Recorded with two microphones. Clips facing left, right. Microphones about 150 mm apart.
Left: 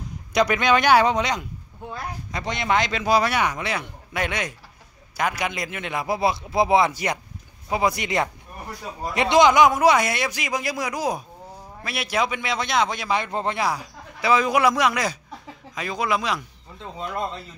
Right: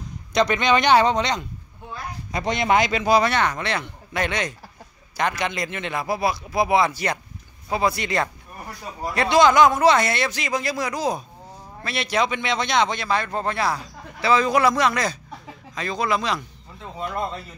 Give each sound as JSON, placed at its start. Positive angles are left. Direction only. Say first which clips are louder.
{"t": 0.3, "sound": "a man's voice", "louder": "even", "side_deg": 5}
{"t": 2.3, "sound": "speech", "louder": "right 3 dB", "side_deg": -20}
{"t": 2.8, "sound": "a man's voice", "louder": "right 2 dB", "side_deg": 0}
{"t": 6.0, "sound": "a man's voice", "louder": "left 2 dB", "side_deg": 20}